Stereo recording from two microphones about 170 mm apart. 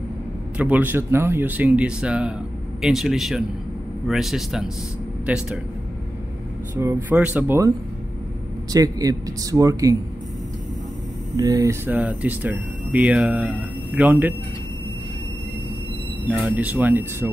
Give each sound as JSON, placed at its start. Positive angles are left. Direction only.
{"t": 0.6, "sound": "speech", "side_deg": -10}
{"t": 6.8, "sound": "speech", "side_deg": -15}
{"t": 8.7, "sound": "speech", "side_deg": -20}
{"t": 11.3, "sound": "speech", "side_deg": -20}
{"t": 16.3, "sound": "speech", "side_deg": -10}